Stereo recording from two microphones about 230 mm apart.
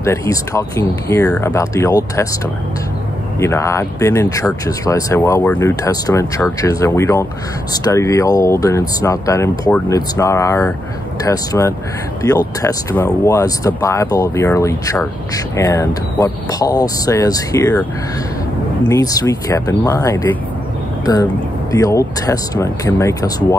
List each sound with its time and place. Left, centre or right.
0.0 s speech: centre
3.3 s speech: centre
18.9 s speech: centre